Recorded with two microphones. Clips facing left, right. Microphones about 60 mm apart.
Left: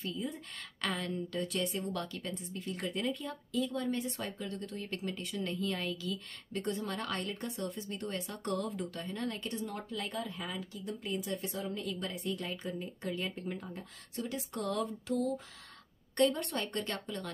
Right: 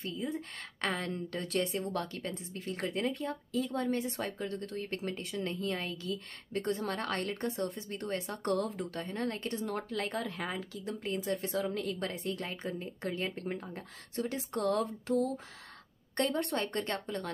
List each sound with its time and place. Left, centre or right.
0.0 s a woman's voice: right
9.7 s speech: right
11.5 s a woman's voice: right
11.8 s speech: right
12.2 s a woman's voice: right